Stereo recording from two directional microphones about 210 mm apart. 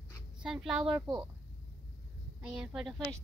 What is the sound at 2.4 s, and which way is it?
Speech, 5° right (ahead or behind).